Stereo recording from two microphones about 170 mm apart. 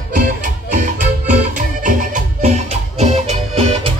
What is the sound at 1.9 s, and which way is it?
Music, 45° right (ahead or behind).